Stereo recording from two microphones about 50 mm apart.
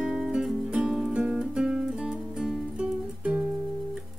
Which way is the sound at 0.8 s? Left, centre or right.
Centre.